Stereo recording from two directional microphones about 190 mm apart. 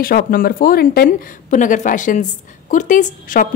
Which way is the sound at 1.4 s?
40° left (ahead or behind).